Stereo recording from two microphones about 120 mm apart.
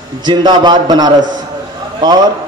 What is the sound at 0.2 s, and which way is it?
A man's voice, 40° right (ahead or behind).